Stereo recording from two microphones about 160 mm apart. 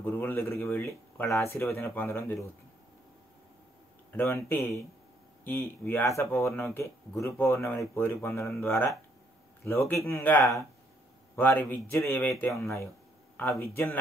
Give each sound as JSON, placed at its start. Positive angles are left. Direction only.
{"t": 0.0, "sound": "speech", "side_deg": 10}
{"t": 4.1, "sound": "speech", "side_deg": 15}
{"t": 13.4, "sound": "speech", "side_deg": 15}